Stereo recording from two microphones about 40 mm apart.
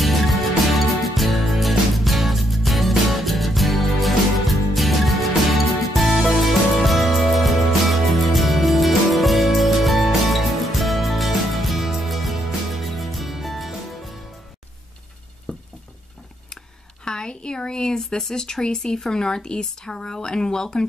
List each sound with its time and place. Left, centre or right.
0.0 s music: centre
15.5 s a sound: left
17.0 s speech: centre